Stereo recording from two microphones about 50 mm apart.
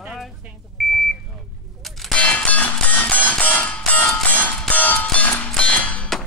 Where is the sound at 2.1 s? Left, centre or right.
Left.